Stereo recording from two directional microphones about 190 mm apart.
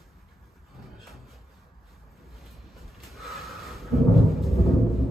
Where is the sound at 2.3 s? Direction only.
Centre (ahead or behind).